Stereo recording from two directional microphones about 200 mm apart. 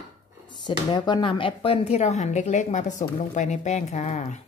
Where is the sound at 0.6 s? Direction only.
20° left (ahead or behind).